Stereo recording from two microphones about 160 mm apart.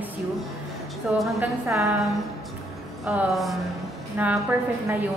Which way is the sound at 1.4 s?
20° right (ahead or behind).